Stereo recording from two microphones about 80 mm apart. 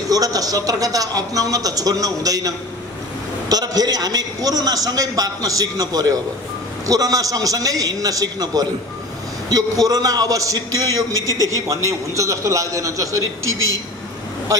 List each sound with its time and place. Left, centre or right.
0.1 s a man's voice: right